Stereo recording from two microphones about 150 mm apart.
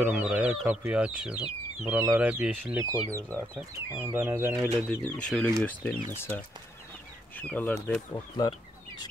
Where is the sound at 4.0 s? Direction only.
15° right (ahead or behind).